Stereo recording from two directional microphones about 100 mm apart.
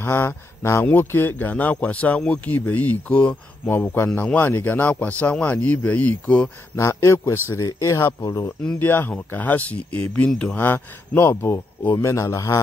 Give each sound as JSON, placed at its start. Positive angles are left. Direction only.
{"t": 0.0, "sound": "speech", "side_deg": 20}
{"t": 6.8, "sound": "speech", "side_deg": 30}
{"t": 8.6, "sound": "speech", "side_deg": 20}